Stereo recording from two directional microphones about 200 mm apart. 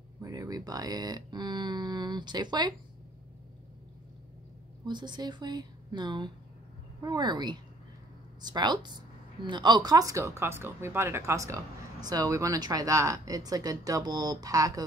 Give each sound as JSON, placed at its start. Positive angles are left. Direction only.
{"t": 0.2, "sound": "speech", "side_deg": -20}
{"t": 4.8, "sound": "a woman's voice", "side_deg": -20}